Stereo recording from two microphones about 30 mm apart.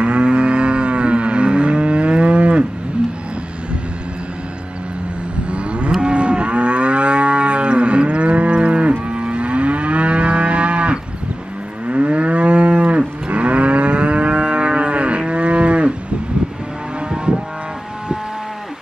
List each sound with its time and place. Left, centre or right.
0.0 s livestock: right
5.5 s moo: right
9.1 s livestock: right
11.9 s moo: right